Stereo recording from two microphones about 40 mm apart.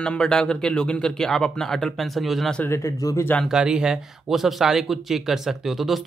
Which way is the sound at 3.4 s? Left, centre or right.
Centre.